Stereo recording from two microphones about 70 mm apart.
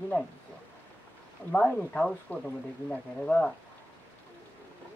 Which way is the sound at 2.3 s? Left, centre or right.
Left.